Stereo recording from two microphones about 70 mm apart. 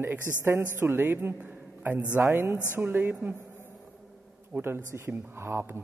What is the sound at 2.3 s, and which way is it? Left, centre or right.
A woman's voice, right.